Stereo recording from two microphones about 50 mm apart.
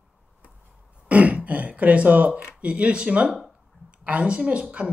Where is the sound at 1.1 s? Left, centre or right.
Right.